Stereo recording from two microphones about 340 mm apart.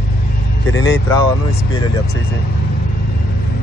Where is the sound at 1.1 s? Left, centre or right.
Centre.